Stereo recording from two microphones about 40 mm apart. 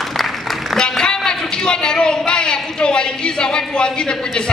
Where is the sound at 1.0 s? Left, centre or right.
Centre.